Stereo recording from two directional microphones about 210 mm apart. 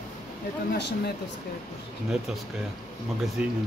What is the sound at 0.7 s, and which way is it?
Speech, 55° left (ahead or behind).